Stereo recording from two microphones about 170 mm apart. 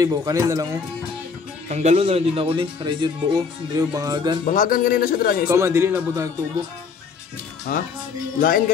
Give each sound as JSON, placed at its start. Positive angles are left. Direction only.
{"t": 0.0, "sound": "speech", "side_deg": -20}
{"t": 1.7, "sound": "speech", "side_deg": -40}
{"t": 4.5, "sound": "speech", "side_deg": 55}
{"t": 5.5, "sound": "speech", "side_deg": -15}
{"t": 7.7, "sound": "speech", "side_deg": 60}